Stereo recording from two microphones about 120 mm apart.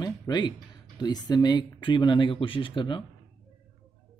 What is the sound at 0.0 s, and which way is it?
Speech, 35° left (ahead or behind).